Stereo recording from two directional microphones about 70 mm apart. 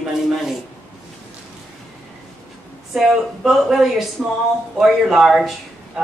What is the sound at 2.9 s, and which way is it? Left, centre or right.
A man's voice, centre.